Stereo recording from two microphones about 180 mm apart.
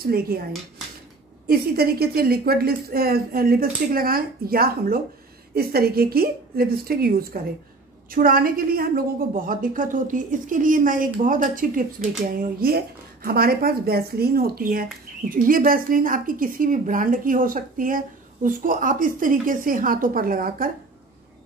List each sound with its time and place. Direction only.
0.0 s speech: 55° right (ahead or behind)
1.5 s speech: 60° right (ahead or behind)